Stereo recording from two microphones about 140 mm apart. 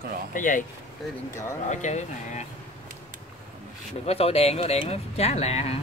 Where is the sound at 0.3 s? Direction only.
70° left (ahead or behind).